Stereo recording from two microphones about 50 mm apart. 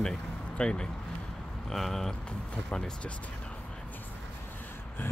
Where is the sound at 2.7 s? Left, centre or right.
Centre.